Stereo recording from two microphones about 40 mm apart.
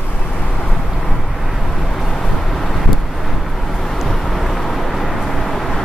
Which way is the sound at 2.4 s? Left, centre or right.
Centre.